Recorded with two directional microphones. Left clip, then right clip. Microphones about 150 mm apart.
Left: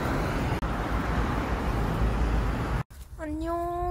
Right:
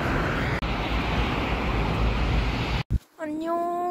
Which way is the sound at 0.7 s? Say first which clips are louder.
Right 3 dB; 20° right (ahead or behind).